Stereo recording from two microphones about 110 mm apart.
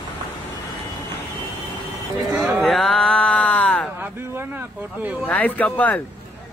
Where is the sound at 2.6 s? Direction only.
Centre (ahead or behind).